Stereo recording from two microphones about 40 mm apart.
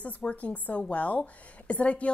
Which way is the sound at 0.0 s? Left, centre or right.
Left.